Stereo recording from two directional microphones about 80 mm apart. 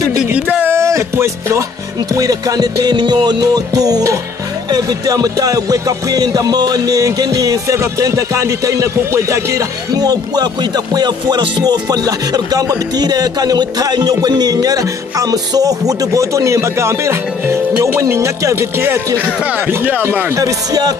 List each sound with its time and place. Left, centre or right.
0.3 s a sound: centre
0.7 s music: right
19.4 s speech: centre
20.1 s speech: right
20.3 s music: right